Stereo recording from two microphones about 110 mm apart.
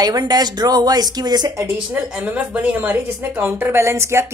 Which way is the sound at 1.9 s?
15° right (ahead or behind).